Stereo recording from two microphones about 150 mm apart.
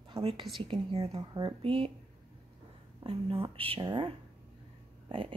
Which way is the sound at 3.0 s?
40° right (ahead or behind).